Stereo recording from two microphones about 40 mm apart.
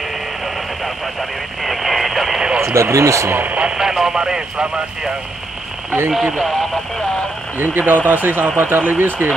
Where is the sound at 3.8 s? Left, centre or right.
Centre.